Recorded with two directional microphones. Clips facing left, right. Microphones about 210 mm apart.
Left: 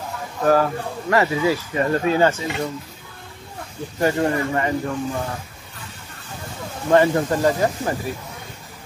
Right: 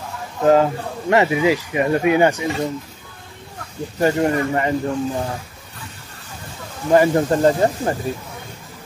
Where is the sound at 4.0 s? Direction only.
20° right (ahead or behind).